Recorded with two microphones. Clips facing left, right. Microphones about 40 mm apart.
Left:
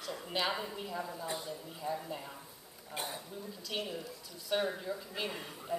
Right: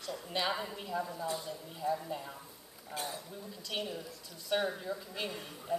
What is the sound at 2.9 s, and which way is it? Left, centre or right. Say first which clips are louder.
Speech: right 1 dB; centre.